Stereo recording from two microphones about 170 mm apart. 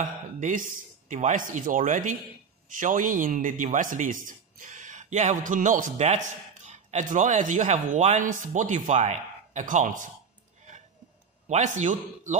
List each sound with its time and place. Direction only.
0.4 s speech: 50° right (ahead or behind)
11.4 s speech: 45° right (ahead or behind)